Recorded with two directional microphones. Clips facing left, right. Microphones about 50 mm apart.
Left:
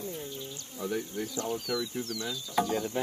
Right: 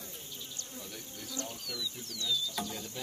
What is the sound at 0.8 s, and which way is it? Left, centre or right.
Bee, left.